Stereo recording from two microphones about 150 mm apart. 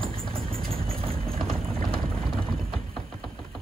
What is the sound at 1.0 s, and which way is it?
Clip-clop, 40° right (ahead or behind).